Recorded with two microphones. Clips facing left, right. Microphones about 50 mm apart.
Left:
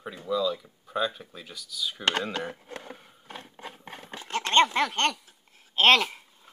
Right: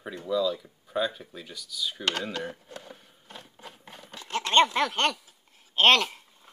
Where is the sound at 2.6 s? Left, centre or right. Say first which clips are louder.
Left 3 dB; left.